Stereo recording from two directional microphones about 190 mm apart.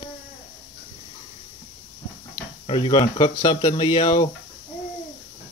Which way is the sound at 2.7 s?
25° left (ahead or behind).